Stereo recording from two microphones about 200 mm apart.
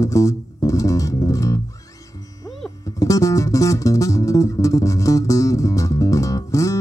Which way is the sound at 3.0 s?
15° left (ahead or behind).